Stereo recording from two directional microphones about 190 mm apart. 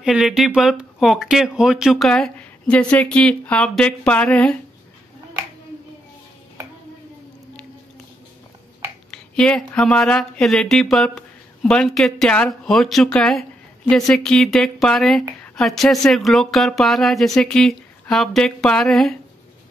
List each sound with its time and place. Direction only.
0.0 s speech: 5° right (ahead or behind)
9.1 s speech: 5° left (ahead or behind)